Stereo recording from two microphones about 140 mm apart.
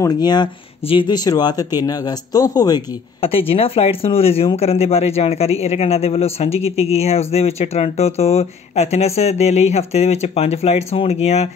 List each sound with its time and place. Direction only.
0.0 s speech: 30° left (ahead or behind)
3.2 s speech: 40° left (ahead or behind)